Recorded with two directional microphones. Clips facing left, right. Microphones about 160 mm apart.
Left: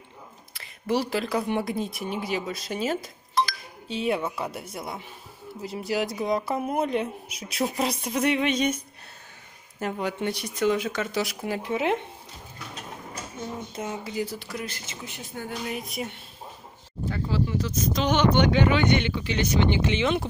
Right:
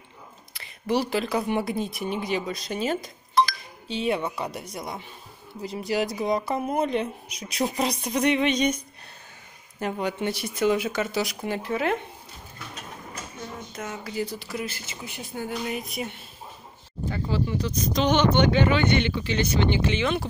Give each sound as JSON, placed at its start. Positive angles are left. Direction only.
{"t": 0.5, "sound": "speech", "side_deg": 0}
{"t": 11.6, "sound": "speech", "side_deg": 20}
{"t": 13.4, "sound": "a sound", "side_deg": 25}
{"t": 14.1, "sound": "speech", "side_deg": 5}
{"t": 17.1, "sound": "speech", "side_deg": 0}